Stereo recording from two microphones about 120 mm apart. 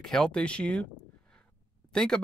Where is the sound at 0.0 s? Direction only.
5° left (ahead or behind).